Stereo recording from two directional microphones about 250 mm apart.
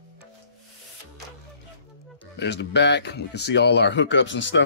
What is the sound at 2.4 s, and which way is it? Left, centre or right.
Speech, left.